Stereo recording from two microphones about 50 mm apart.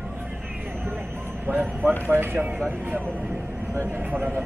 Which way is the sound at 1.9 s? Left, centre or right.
Right.